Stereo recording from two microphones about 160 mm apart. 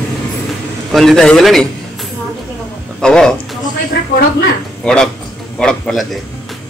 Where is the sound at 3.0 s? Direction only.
5° left (ahead or behind).